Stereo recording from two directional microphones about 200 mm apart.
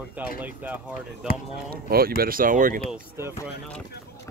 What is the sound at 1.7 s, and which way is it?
Speech, 50° right (ahead or behind).